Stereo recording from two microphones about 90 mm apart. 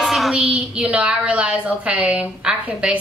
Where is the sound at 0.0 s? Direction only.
Centre (ahead or behind).